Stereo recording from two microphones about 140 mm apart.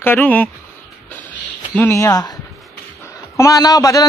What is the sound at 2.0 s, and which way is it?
Speech, 30° left (ahead or behind).